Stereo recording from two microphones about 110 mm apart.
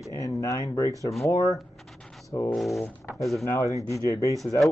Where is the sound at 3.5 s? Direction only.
25° left (ahead or behind).